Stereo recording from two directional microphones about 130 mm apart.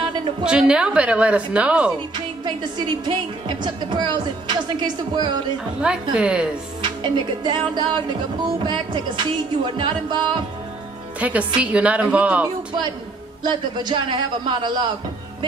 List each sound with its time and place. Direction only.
0.5 s a woman's voice: 5° right (ahead or behind)
2.1 s music: 35° right (ahead or behind)
6.1 s a woman's voice: 5° right (ahead or behind)
6.8 s music: 40° right (ahead or behind)
11.1 s a woman's voice: 10° right (ahead or behind)
13.4 s music: 35° right (ahead or behind)